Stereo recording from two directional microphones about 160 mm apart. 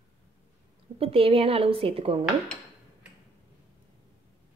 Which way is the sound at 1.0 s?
35° right (ahead or behind).